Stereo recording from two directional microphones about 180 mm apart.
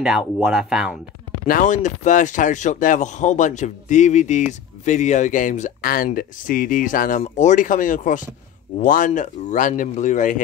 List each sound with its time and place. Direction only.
0.4 s speech: 5° right (ahead or behind)
1.5 s speech: 45° left (ahead or behind)